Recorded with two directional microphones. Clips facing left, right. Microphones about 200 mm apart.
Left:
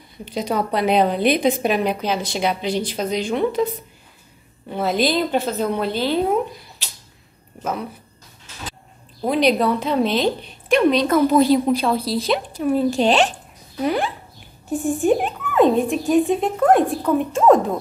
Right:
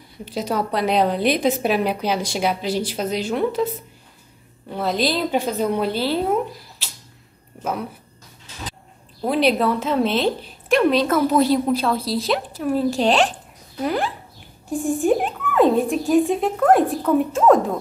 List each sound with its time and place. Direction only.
0.2 s a woman's voice: 5° right (ahead or behind)
4.6 s a woman's voice: 5° left (ahead or behind)
5.4 s a woman's voice: 10° right (ahead or behind)
9.2 s a woman's voice: centre (ahead or behind)